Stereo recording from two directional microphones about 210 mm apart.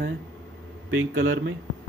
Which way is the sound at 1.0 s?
70° right (ahead or behind).